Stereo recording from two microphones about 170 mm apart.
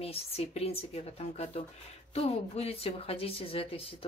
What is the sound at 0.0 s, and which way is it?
A woman's voice, 35° left (ahead or behind).